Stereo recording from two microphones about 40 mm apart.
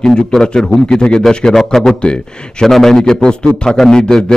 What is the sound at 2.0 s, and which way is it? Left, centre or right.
Speech, left.